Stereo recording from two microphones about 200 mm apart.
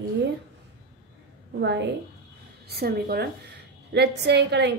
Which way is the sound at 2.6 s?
50° right (ahead or behind).